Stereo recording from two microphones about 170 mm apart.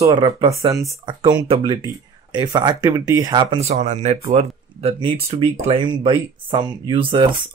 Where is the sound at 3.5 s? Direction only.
40° right (ahead or behind).